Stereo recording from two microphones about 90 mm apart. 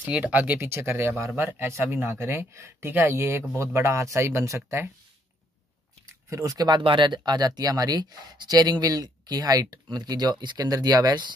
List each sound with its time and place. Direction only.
0.1 s speech: 20° right (ahead or behind)
6.3 s speech: 40° right (ahead or behind)
6.8 s speech: 65° right (ahead or behind)
10.7 s speech: 45° right (ahead or behind)